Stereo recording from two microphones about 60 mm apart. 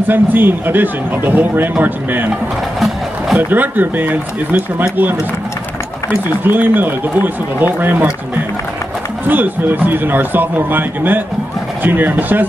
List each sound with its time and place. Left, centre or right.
0.1 s speech: right
3.3 s speech: right
6.0 s speech: right
9.3 s speech: right